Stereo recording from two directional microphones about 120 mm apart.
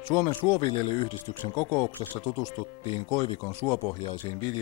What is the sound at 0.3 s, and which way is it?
Speech, 15° left (ahead or behind).